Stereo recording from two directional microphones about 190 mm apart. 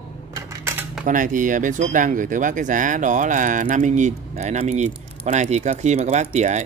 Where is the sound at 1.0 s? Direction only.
45° right (ahead or behind).